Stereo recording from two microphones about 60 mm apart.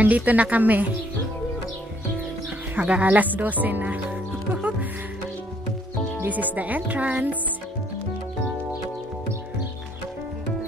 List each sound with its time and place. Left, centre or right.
0.0 s speech: right
2.7 s speech: right
6.2 s speech: right